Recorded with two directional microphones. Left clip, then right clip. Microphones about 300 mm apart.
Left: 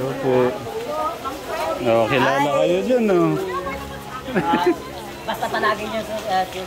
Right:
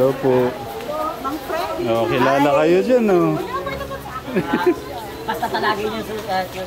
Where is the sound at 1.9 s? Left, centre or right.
Centre.